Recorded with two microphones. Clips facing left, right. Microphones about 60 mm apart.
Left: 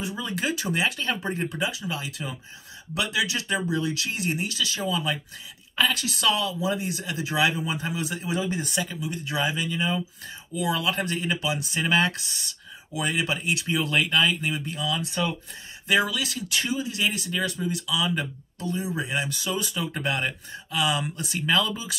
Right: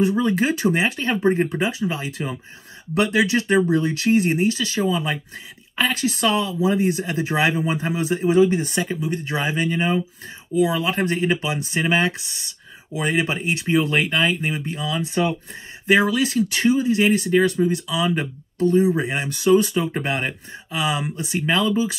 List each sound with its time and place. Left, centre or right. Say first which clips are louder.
0.0 s speech: right 10 dB; right
10.5 s speech: right 6 dB; right